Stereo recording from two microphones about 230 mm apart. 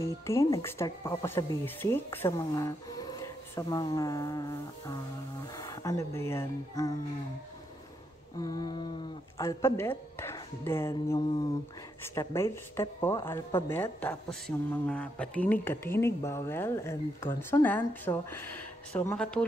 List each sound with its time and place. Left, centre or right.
0.0 s speech: centre
8.4 s speech: centre